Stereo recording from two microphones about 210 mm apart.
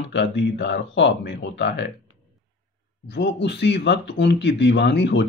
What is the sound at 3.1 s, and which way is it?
Speech, 55° left (ahead or behind).